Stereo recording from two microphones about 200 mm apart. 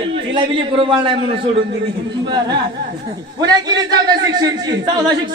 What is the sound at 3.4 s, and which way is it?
A man's voice, 20° right (ahead or behind).